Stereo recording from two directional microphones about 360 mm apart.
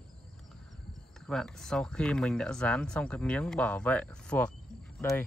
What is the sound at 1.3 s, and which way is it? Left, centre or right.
Speech, centre.